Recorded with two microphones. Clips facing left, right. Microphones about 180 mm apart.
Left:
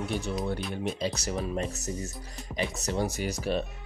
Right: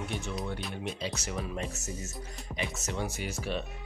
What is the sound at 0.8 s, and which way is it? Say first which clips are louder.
Speech: left 6 dB; 40° left (ahead or behind).